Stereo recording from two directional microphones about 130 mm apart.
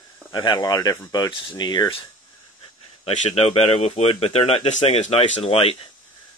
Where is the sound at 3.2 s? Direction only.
50° left (ahead or behind).